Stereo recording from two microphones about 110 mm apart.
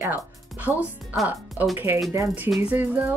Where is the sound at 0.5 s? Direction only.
15° right (ahead or behind).